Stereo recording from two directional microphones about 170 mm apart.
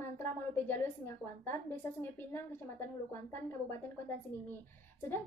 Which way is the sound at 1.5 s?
10° left (ahead or behind).